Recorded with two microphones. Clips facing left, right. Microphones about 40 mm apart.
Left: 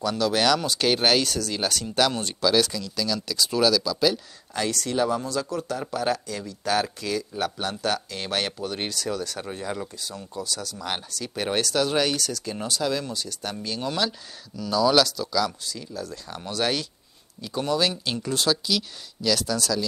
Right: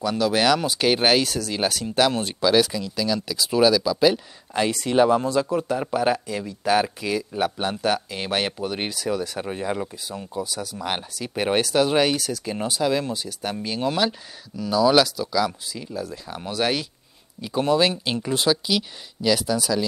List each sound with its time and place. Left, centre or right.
0.0 s speech: centre